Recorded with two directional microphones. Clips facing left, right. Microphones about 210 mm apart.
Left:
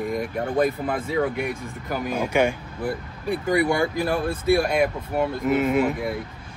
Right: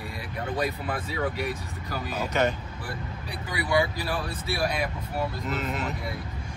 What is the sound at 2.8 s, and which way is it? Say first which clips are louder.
Speech: left 8 dB; 50° left (ahead or behind).